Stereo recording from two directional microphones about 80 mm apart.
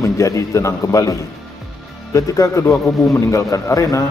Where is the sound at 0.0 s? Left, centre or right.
Left.